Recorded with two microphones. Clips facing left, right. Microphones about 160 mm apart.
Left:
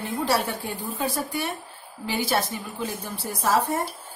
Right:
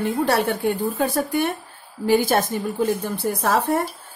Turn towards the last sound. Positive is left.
turn(degrees=-60)  # may be behind; listen again after turning